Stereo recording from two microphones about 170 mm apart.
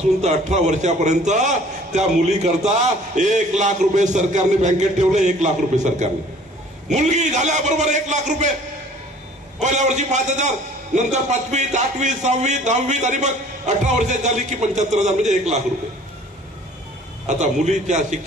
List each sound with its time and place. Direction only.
0.2 s speech: 40° right (ahead or behind)
9.6 s speech: 45° right (ahead or behind)
17.3 s speech: 45° right (ahead or behind)